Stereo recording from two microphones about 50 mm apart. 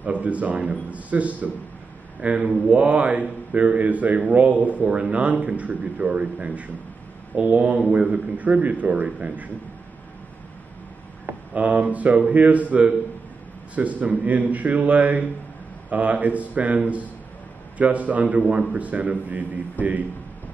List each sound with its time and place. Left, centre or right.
0.0 s a man's voice: right
11.2 s a man's voice: right